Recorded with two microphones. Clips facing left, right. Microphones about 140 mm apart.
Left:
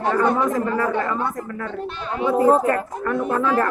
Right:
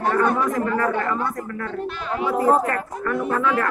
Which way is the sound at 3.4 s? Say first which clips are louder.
Left 3 dB; 30° left (ahead or behind).